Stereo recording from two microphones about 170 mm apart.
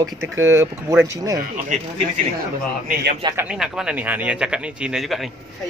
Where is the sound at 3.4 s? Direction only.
5° right (ahead or behind).